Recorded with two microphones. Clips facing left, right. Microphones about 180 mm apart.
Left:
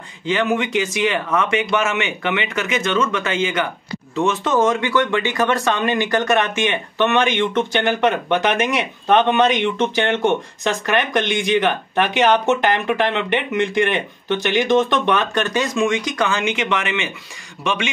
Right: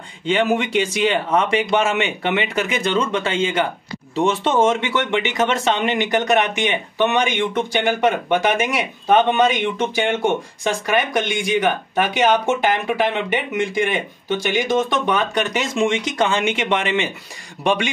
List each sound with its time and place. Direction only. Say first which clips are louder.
0.3 s speech: right 1 dB; 30° right (ahead or behind)